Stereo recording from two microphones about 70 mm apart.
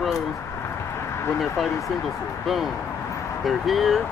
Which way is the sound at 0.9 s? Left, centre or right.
Left.